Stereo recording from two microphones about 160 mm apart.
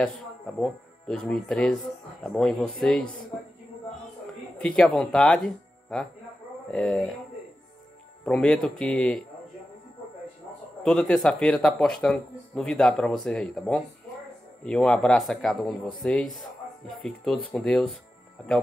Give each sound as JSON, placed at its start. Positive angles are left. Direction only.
{"t": 0.6, "sound": "speech", "side_deg": 5}
{"t": 4.6, "sound": "speech", "side_deg": 5}
{"t": 8.3, "sound": "speech", "side_deg": 5}
{"t": 10.8, "sound": "speech", "side_deg": 5}